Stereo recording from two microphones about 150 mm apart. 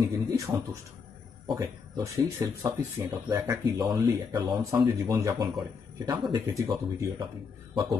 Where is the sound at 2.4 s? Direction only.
20° right (ahead or behind).